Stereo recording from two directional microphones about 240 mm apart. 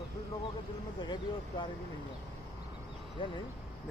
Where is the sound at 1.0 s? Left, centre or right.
Centre.